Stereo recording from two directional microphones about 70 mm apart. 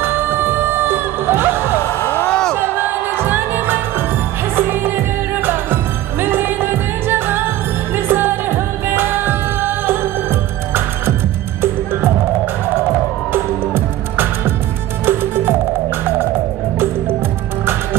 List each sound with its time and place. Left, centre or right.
0.0 s music: right
2.0 s music: left
2.2 s a sound: centre
2.5 s music: right
11.6 s music: right
13.3 s music: right